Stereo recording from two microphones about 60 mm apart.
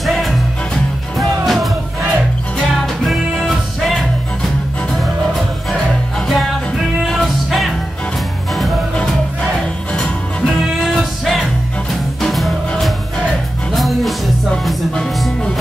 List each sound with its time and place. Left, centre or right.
0.0 s music: centre
3.0 s music: centre
8.9 s music: centre
13.7 s music: centre